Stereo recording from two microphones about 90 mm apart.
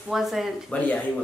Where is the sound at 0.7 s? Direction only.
15° left (ahead or behind).